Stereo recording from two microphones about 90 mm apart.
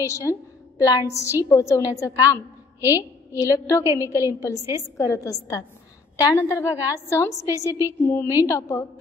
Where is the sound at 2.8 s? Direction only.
25° right (ahead or behind).